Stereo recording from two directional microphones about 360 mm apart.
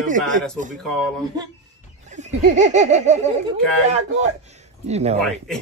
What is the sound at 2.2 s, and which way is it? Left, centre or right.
Laughter, centre.